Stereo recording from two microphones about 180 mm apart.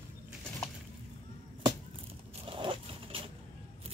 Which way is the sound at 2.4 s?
30° right (ahead or behind).